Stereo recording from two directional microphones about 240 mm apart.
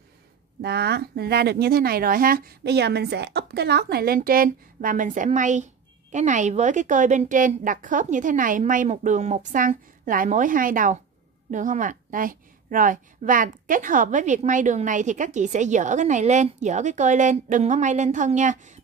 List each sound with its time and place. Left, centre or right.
0.6 s a woman's voice: right